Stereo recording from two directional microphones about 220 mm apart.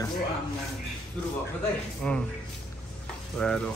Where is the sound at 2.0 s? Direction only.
5° left (ahead or behind).